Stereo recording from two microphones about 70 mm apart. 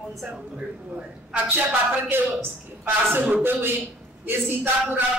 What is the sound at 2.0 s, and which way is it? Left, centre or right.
A man's voice, right.